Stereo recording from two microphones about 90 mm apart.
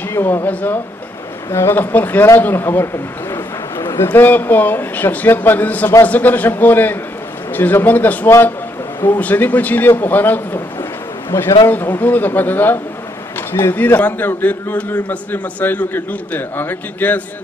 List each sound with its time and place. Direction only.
0.1 s a man's voice: 25° left (ahead or behind)